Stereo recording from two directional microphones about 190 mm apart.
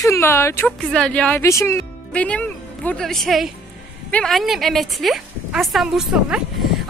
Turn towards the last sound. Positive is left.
turn(degrees=0)  # may be behind; listen again after turning